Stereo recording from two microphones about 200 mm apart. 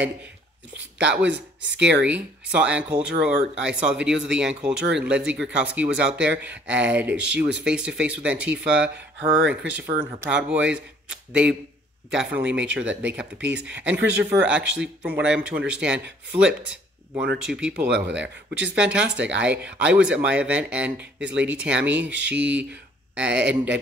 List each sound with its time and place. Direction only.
0.9 s speech: 5° right (ahead or behind)
12.1 s speech: 5° right (ahead or behind)